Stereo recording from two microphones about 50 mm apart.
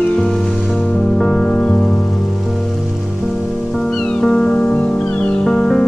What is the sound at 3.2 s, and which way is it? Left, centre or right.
Music, centre.